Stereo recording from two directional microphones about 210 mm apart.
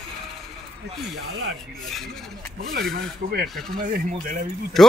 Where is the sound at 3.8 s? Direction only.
40° right (ahead or behind).